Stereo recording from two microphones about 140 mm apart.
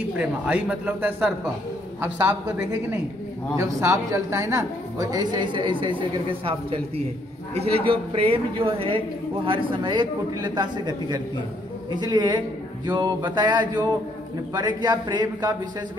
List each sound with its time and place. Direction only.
0.2 s a man's voice: 10° right (ahead or behind)
3.5 s a woman's voice: 20° right (ahead or behind)